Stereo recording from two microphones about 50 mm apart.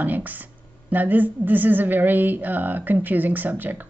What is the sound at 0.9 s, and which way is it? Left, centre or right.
Speech, right.